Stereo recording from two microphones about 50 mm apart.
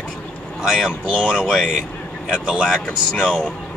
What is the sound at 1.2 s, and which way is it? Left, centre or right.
Speech, left.